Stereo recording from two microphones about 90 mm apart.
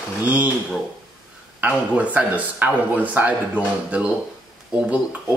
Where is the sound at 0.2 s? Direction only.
15° right (ahead or behind).